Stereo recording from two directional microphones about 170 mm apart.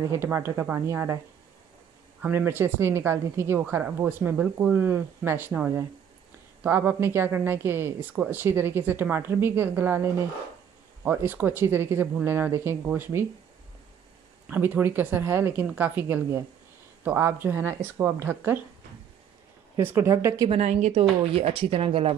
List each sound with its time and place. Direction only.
0.1 s speech: 15° right (ahead or behind)
2.2 s speech: 15° right (ahead or behind)
14.5 s speech: 10° right (ahead or behind)
19.8 s speech: 15° right (ahead or behind)
20.4 s speech: 40° right (ahead or behind)